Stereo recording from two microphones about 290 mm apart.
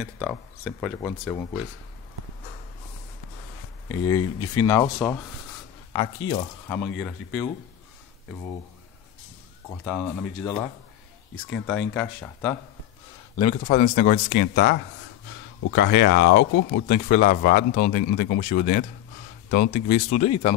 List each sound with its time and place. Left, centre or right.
0.0 s speech: centre
3.9 s speech: centre
9.8 s speech: centre
11.6 s speech: centre
13.4 s speech: left